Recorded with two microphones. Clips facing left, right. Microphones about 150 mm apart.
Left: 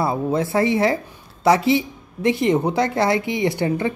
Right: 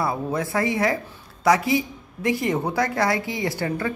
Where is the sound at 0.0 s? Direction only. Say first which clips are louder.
Left 4 dB; 25° left (ahead or behind).